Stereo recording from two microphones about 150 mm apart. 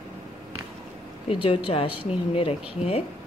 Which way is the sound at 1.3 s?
35° left (ahead or behind).